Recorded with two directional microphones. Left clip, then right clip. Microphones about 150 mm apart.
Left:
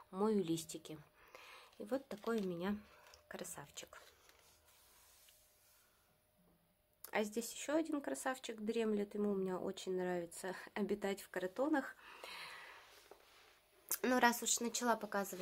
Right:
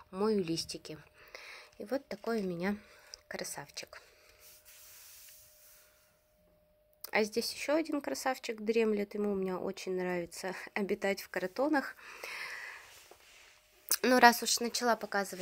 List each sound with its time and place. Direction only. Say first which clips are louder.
0.1 s speech: right 5 dB; 20° right (ahead or behind)
2.3 s speech: right 6 dB; 40° right (ahead or behind)
7.0 s a sound: right 8 dB; 30° right (ahead or behind)
7.3 s speech: right 7 dB; 30° right (ahead or behind)
13.8 s speech: right 10 dB; 30° right (ahead or behind)